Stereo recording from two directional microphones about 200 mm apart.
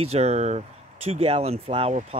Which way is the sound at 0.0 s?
30° right (ahead or behind).